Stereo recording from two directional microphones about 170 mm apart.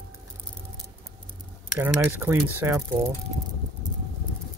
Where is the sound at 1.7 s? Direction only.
15° right (ahead or behind).